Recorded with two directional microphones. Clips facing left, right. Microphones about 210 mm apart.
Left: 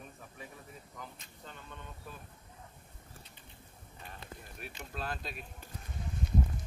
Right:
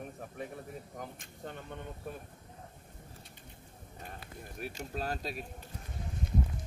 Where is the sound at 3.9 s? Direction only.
45° right (ahead or behind).